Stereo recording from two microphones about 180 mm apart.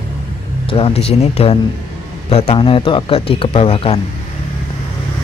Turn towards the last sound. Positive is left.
turn(degrees=30)  # may be behind; listen again after turning